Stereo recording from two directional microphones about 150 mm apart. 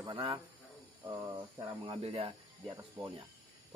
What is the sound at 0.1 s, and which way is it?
Speech, 35° right (ahead or behind).